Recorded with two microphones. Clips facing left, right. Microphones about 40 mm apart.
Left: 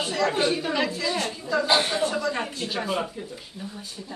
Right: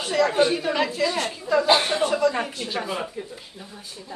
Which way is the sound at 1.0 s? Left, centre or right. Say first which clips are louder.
Right 3 dB; right.